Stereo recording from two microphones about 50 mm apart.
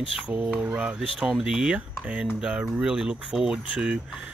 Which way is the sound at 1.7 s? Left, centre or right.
Right.